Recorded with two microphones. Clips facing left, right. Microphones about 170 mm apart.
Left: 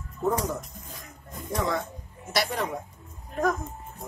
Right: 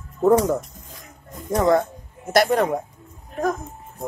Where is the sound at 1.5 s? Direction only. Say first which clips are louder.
Right 10 dB; 45° right (ahead or behind).